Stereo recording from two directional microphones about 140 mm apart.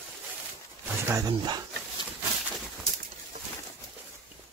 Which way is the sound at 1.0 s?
25° right (ahead or behind).